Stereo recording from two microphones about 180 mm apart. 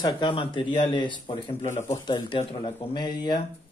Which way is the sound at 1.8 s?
20° left (ahead or behind).